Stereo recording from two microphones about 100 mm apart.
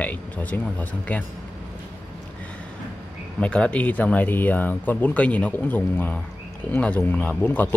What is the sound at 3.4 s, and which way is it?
Speech, 10° left (ahead or behind).